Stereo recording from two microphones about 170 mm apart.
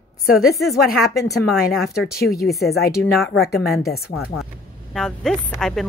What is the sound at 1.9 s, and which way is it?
Speech, 65° left (ahead or behind).